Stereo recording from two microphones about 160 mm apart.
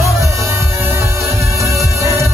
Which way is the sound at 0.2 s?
20° right (ahead or behind).